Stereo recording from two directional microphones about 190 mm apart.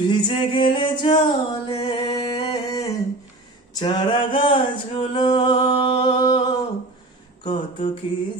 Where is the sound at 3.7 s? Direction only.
25° left (ahead or behind).